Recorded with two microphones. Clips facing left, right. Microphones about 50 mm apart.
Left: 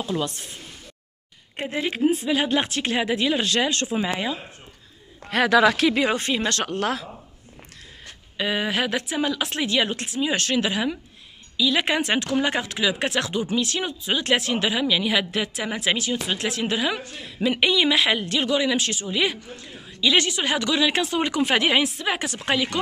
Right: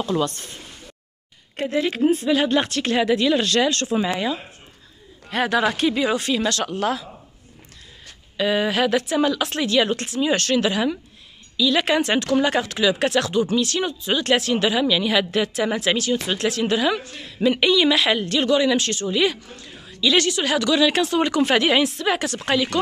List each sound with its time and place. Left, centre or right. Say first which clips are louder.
0.1 s speech: right 4 dB; centre
1.6 s speech: right 3 dB; centre
5.4 s speech: left 2 dB; left
5.9 s speech: right 1 dB; left
8.4 s speech: right 4 dB; centre